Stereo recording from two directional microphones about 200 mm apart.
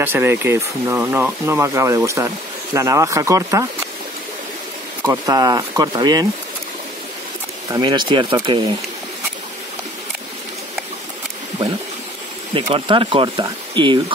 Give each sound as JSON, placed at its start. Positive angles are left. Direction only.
{"t": 0.0, "sound": "speech", "side_deg": -10}
{"t": 5.0, "sound": "speech", "side_deg": -20}
{"t": 7.7, "sound": "speech", "side_deg": -20}
{"t": 12.5, "sound": "speech", "side_deg": -25}